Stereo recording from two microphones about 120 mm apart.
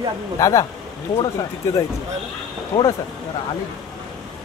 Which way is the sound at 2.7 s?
25° left (ahead or behind).